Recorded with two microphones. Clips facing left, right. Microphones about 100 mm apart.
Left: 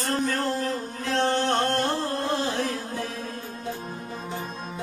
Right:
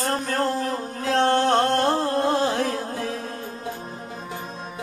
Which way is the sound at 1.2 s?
55° right (ahead or behind).